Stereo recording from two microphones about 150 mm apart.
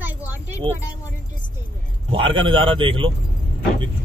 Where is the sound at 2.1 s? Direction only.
35° right (ahead or behind).